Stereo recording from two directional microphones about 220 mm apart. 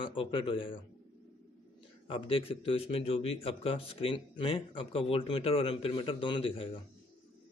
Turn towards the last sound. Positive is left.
turn(degrees=25)  # may be behind; listen again after turning